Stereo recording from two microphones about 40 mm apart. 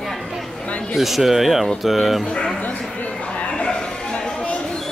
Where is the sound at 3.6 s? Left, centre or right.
Left.